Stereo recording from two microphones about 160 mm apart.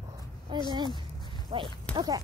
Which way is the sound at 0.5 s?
30° right (ahead or behind).